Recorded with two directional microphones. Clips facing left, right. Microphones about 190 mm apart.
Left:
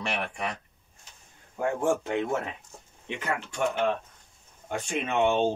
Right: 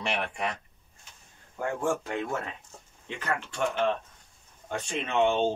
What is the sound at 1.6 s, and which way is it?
Speech, 20° left (ahead or behind).